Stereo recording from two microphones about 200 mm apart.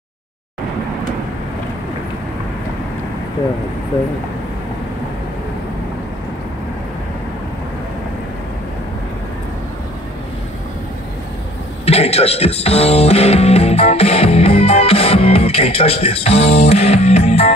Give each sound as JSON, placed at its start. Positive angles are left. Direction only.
{"t": 11.8, "sound": "speech", "side_deg": 30}